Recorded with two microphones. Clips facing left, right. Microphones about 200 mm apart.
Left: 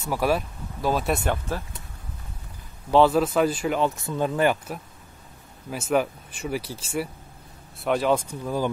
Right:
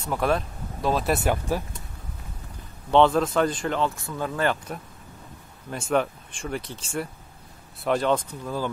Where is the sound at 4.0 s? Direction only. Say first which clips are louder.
Left 4 dB; 20° left (ahead or behind).